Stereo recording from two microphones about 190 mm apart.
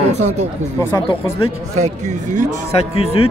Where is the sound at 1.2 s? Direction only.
35° right (ahead or behind).